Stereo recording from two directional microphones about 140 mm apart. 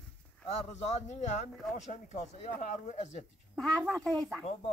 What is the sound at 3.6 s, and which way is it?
Speech, 5° left (ahead or behind).